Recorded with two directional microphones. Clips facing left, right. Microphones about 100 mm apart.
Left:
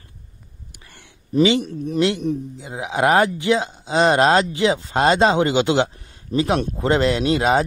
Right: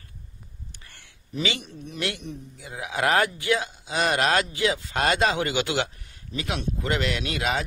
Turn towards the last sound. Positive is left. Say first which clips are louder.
# left 9 dB
turn(degrees=35)  # may be behind; listen again after turning